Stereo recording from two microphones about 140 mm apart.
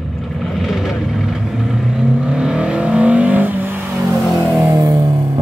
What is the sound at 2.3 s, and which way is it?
Vehicle, 5° right (ahead or behind).